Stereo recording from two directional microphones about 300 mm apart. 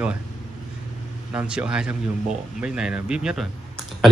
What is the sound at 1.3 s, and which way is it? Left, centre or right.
Mantra, centre.